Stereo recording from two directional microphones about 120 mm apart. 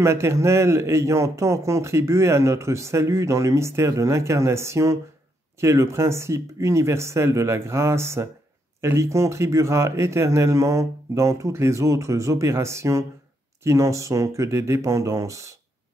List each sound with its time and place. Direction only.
0.0 s speech: 20° right (ahead or behind)